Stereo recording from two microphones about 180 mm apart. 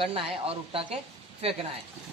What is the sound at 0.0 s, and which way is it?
Speech, 30° right (ahead or behind).